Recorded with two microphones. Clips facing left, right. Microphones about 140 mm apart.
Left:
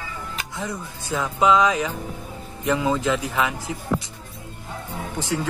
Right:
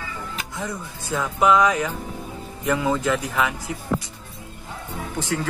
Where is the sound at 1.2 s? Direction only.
20° left (ahead or behind).